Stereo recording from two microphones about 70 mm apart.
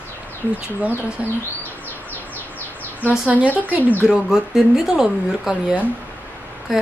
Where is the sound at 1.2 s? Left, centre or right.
Centre.